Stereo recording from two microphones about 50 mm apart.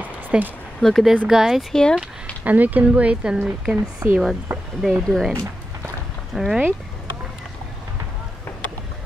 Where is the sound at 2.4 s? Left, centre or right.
Right; by 3.7 s centre.